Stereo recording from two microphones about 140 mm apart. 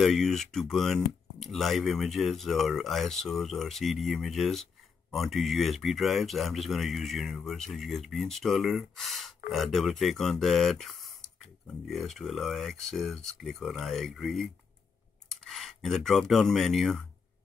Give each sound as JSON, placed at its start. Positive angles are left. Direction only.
{"t": 0.0, "sound": "speech", "side_deg": 0}